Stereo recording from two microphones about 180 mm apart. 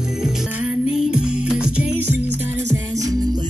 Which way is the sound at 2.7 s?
20° right (ahead or behind).